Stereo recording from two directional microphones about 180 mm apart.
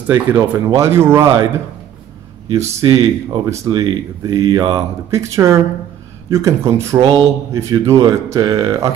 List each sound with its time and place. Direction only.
0.1 s speech: 15° right (ahead or behind)
2.6 s speech: 25° right (ahead or behind)
7.0 s speech: 30° right (ahead or behind)
7.5 s speech: 15° right (ahead or behind)